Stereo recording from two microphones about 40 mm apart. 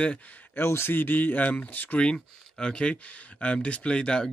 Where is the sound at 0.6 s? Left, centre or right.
Left.